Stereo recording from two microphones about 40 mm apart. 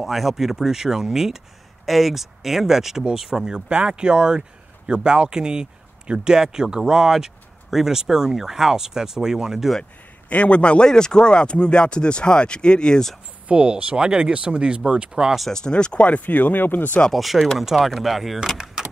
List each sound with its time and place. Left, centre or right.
0.0 s speech: centre
10.3 s speech: left
13.5 s speech: right
15.5 s speech: left
16.1 s speech: left
17.1 s speech: centre